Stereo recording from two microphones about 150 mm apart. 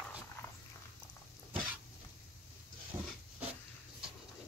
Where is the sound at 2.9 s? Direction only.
15° right (ahead or behind).